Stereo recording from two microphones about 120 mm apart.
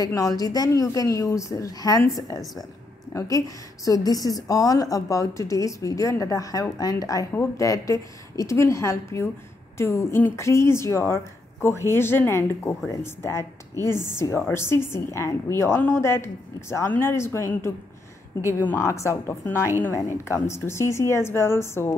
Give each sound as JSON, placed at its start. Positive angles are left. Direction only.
{"t": 0.0, "sound": "speech", "side_deg": 30}